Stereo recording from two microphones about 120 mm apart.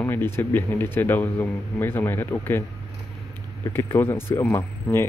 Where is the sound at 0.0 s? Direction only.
15° left (ahead or behind).